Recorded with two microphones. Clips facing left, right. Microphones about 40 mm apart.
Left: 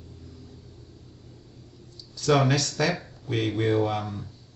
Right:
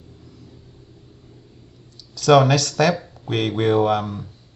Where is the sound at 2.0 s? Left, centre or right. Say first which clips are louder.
Right 8 dB; right.